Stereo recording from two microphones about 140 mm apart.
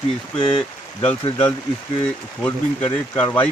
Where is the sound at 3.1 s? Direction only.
10° left (ahead or behind).